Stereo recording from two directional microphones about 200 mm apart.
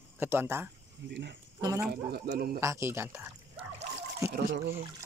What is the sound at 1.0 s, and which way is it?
Speech, 60° right (ahead or behind).